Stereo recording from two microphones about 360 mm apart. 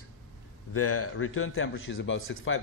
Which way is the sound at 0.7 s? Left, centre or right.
Left.